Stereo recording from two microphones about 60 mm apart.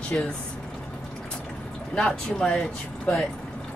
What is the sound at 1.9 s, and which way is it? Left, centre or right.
Speech, centre.